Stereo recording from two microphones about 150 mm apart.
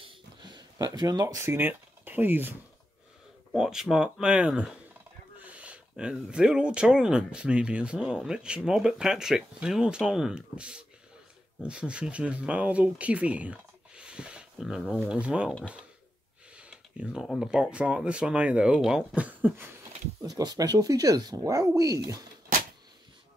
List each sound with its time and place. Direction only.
0.0 s a sound: 30° right (ahead or behind); by 2.5 s 15° right (ahead or behind)
3.5 s speech: 5° right (ahead or behind)
16.5 s speech: 5° right (ahead or behind)
20.2 s speech: 25° right (ahead or behind)